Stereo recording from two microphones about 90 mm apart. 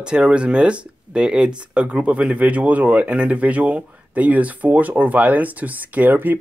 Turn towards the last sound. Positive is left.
turn(degrees=-20)  # may be behind; listen again after turning